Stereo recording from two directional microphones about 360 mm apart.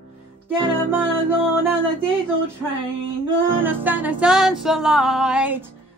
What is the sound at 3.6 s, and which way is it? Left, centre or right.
Music, centre.